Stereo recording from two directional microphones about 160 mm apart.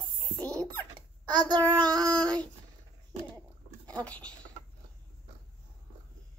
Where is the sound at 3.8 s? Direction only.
10° left (ahead or behind).